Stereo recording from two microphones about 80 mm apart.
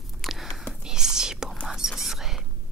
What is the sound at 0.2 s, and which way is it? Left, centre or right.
Whispering, centre.